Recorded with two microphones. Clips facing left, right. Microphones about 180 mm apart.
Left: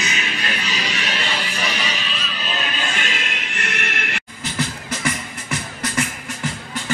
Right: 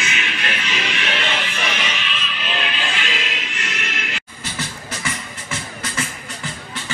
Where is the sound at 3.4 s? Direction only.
55° left (ahead or behind).